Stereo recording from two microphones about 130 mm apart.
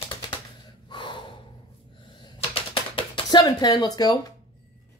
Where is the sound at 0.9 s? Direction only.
40° left (ahead or behind).